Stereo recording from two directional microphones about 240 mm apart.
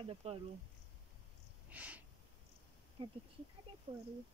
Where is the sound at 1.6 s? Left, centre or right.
Centre.